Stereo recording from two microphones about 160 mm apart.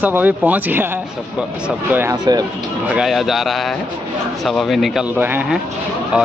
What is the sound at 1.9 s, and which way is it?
Speech, 15° right (ahead or behind).